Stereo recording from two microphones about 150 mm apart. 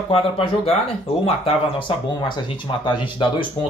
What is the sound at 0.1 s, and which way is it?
Speech, 40° left (ahead or behind).